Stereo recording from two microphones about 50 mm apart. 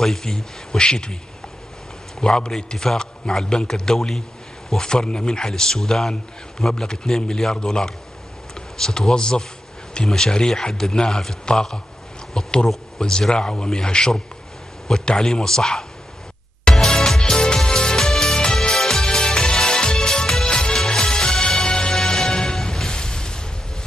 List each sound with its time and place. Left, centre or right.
0.0 s a man's voice: centre
2.1 s a man's voice: centre
16.7 s music: centre